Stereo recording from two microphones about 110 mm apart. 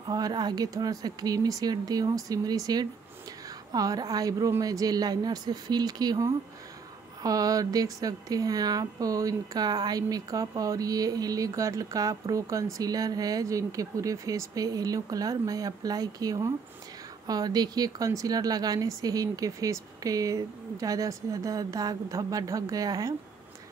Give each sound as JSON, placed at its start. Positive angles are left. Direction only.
{"t": 0.1, "sound": "a woman's voice", "side_deg": -40}